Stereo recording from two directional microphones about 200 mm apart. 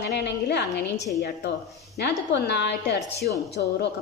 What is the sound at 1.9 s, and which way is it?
A woman's voice, 55° left (ahead or behind).